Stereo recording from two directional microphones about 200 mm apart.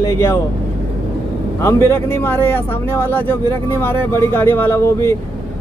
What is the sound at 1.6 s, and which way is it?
Speech, 15° left (ahead or behind).